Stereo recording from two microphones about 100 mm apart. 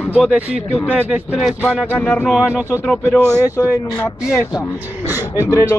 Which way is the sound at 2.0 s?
10° left (ahead or behind).